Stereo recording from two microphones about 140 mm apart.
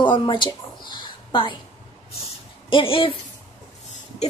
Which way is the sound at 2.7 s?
40° left (ahead or behind).